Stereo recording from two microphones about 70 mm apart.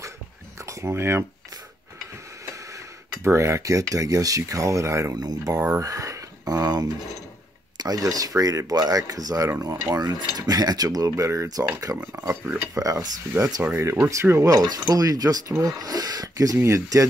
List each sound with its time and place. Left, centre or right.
0.6 s a sound: right
3.3 s speech: right
5.1 s speech: right
11.4 s speech: right
13.3 s speech: right
13.7 s speech: right
16.5 s speech: right